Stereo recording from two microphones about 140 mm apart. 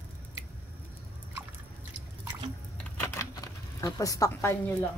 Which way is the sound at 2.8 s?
15° left (ahead or behind).